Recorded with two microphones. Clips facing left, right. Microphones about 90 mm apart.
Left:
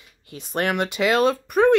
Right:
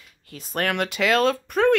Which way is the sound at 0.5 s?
15° left (ahead or behind).